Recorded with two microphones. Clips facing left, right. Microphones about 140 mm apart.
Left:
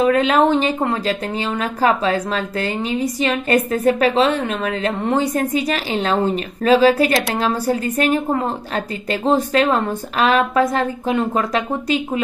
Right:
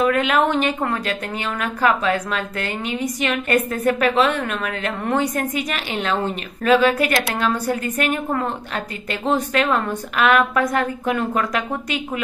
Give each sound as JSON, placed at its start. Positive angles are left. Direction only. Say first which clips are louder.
{"t": 0.0, "sound": "a woman's voice", "louder": "left 3 dB", "side_deg": 30}